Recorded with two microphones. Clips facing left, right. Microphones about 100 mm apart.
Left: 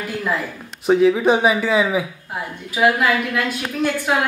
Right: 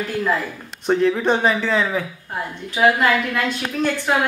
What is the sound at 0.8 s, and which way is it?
Speech, 5° left (ahead or behind).